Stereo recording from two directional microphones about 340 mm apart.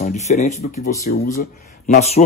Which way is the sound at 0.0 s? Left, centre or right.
Centre.